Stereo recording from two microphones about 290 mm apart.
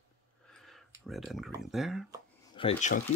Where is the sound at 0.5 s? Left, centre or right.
Centre.